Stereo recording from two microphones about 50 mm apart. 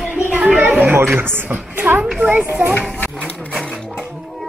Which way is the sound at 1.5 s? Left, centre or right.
Right.